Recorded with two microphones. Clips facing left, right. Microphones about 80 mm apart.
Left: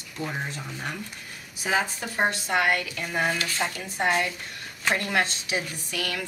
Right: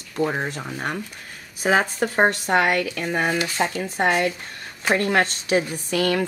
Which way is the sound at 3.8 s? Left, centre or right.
Right.